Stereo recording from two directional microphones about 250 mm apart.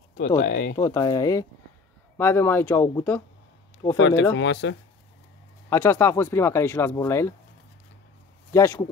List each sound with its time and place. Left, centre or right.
0.4 s speech: left
0.7 s speech: centre
4.0 s speech: left
5.7 s speech: centre
8.5 s speech: centre